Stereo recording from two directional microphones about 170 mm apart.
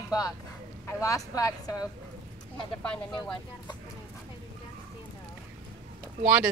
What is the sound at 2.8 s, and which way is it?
Speech, 5° left (ahead or behind).